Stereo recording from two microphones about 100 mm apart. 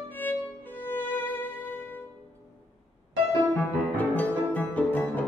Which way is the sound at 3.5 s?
15° left (ahead or behind).